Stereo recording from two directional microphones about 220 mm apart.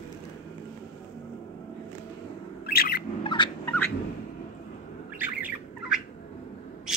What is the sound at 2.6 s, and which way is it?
Bird, 45° left (ahead or behind).